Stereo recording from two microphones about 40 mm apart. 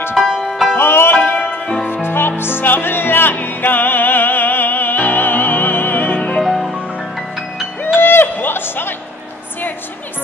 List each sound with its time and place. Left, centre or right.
0.2 s music: centre
0.7 s music: left
1.1 s music: left
2.0 s music: left
6.4 s music: centre
7.8 s a sound: left